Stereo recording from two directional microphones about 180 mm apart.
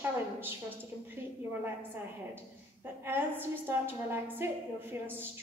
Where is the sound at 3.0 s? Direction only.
10° right (ahead or behind).